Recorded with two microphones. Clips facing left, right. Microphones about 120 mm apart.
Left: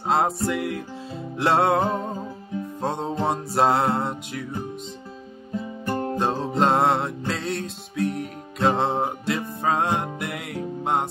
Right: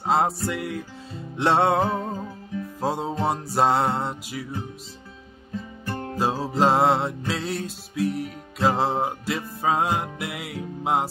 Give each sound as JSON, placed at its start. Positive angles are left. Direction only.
{"t": 0.0, "sound": "music", "side_deg": 0}
{"t": 5.9, "sound": "music", "side_deg": 30}
{"t": 6.1, "sound": "music", "side_deg": -5}